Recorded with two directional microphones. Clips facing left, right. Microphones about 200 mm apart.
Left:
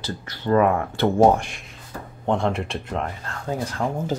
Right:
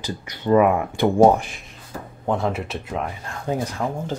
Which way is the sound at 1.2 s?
5° right (ahead or behind).